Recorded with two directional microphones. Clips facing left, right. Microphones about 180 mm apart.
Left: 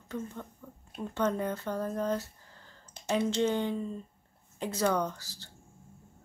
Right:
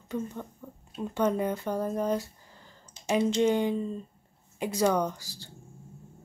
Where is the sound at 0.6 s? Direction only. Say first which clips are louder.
Right 4 dB; 15° right (ahead or behind).